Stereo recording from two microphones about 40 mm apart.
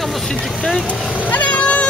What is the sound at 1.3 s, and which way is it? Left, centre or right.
Vehicle, left.